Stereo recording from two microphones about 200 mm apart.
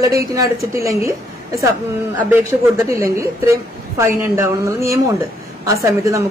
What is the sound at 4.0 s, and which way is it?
Speech, 15° right (ahead or behind).